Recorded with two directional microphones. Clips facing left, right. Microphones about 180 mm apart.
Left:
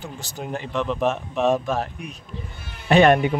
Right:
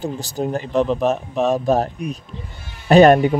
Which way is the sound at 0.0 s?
40° right (ahead or behind).